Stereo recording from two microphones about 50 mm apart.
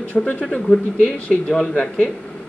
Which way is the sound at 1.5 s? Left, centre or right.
Centre.